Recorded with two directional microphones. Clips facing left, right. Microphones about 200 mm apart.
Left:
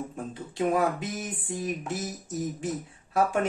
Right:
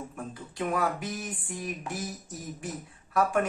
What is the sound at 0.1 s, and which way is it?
Speech, 25° left (ahead or behind).